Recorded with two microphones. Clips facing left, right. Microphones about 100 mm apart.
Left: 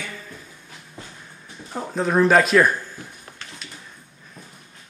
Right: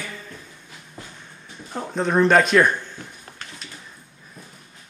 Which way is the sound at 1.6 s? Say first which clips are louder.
Even; centre (ahead or behind).